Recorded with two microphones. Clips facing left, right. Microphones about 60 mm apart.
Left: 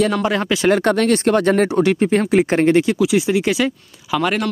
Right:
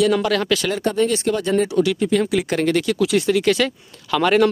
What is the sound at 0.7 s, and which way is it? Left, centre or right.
Speech, left.